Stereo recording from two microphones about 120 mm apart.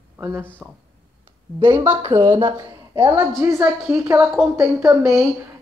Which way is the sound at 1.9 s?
20° right (ahead or behind).